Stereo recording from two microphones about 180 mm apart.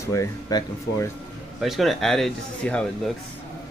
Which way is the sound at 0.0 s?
15° left (ahead or behind).